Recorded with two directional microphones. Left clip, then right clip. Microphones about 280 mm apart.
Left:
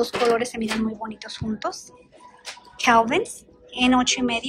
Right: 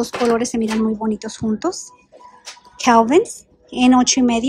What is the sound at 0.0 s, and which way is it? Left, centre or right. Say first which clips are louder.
Speech: right 2 dB; centre.